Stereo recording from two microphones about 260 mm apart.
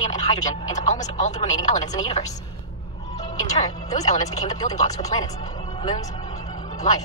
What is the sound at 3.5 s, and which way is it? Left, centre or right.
Speech, centre.